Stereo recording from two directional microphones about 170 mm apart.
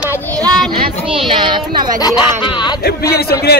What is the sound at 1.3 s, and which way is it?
Speech, 25° right (ahead or behind).